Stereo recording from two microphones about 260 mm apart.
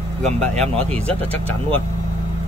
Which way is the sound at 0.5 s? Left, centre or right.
Right.